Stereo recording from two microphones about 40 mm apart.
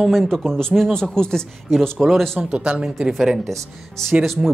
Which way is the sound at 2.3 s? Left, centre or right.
Right.